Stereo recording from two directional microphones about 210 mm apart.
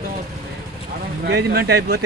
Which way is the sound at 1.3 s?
50° right (ahead or behind).